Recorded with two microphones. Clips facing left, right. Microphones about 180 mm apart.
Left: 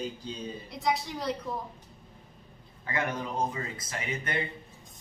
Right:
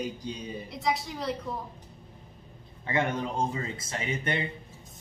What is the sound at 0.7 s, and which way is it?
Speech, centre (ahead or behind).